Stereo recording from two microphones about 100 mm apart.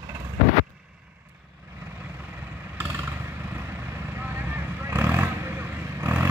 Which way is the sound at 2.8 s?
20° right (ahead or behind).